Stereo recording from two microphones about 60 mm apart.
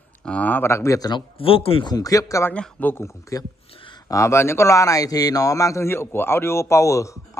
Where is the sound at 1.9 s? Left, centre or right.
Left.